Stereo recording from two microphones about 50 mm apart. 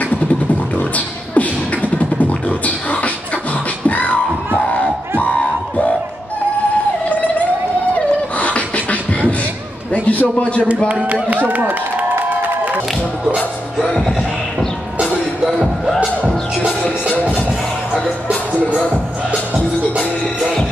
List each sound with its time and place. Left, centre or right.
0.9 s beatboxing: left
8.4 s beatboxing: left
9.9 s a sound: left
10.9 s speech: right
11.2 s a sound: right
15.4 s music: centre
18.3 s music: left